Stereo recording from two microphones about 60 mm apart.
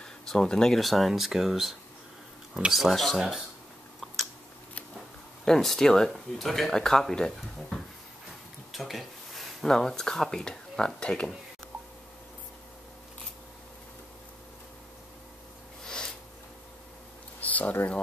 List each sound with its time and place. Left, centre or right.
0.0 s speech: centre
5.4 s speech: centre
15.8 s sniff: centre
17.4 s a sound: left